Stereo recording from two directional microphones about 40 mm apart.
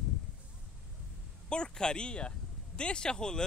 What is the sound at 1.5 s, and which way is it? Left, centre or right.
Speech, left.